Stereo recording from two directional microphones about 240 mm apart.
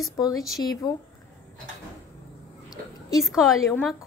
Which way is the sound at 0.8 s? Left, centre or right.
Centre.